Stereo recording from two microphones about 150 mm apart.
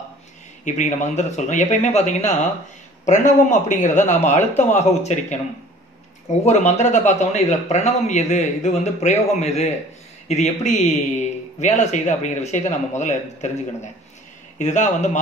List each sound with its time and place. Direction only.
0.7 s a man's voice: 50° left (ahead or behind)
6.4 s a man's voice: 50° left (ahead or behind)
14.6 s a man's voice: 50° left (ahead or behind)